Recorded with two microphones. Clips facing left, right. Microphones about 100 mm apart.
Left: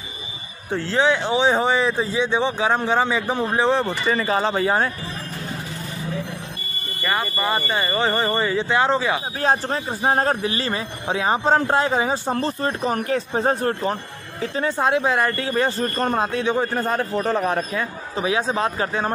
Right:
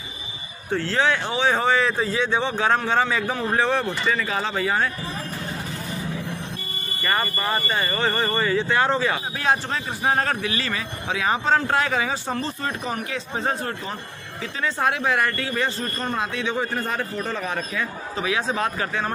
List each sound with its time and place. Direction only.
0.7 s speech: 25° left (ahead or behind)
7.1 s speech: 10° left (ahead or behind)
9.4 s a man's voice: 35° left (ahead or behind)
14.8 s speech: 25° left (ahead or behind)
15.8 s a man's voice: 45° left (ahead or behind)